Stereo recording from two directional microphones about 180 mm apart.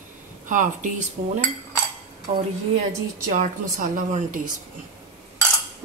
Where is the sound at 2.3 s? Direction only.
35° right (ahead or behind).